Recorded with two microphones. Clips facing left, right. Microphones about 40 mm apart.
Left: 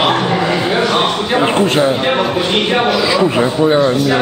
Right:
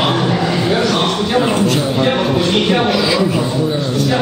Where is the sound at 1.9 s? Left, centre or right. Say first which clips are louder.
Even; centre.